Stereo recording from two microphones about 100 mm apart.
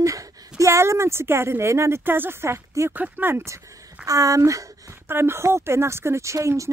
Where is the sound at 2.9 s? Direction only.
15° right (ahead or behind).